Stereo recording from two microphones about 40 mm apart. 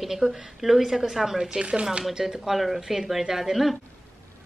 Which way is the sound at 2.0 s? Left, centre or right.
Centre.